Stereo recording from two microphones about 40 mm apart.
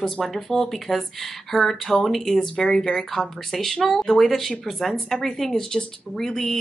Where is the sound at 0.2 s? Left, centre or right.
Centre.